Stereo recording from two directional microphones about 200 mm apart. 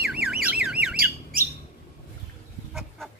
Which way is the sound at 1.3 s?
45° right (ahead or behind).